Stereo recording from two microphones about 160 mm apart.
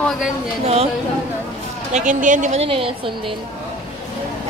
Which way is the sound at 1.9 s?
50° right (ahead or behind).